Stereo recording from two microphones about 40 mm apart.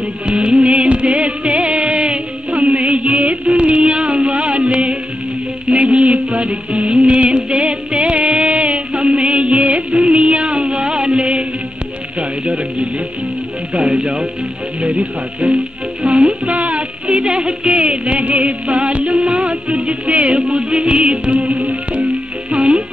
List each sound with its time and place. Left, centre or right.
0.3 s music: right
13.8 s speech: centre
14.8 s music: right
17.1 s music: right